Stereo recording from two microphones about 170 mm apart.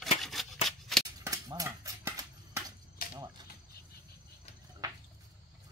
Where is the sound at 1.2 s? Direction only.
20° right (ahead or behind).